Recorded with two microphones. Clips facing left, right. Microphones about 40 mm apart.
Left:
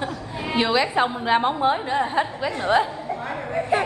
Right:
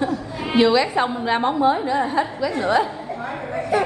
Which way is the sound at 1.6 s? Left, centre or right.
Left.